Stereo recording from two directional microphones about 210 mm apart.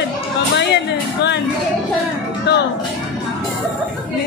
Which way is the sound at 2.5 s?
55° left (ahead or behind).